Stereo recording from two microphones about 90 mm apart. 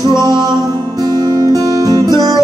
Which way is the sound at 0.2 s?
45° right (ahead or behind).